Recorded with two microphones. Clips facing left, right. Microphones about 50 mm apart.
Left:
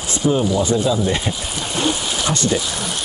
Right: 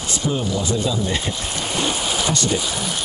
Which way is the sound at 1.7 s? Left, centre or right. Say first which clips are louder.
Left 2 dB; centre.